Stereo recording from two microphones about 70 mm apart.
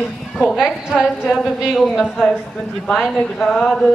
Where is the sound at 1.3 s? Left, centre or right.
Centre.